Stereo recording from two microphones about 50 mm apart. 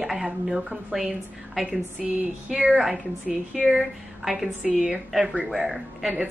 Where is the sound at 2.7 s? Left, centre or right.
Centre.